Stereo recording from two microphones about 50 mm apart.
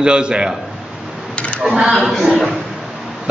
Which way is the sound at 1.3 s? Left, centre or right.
Left.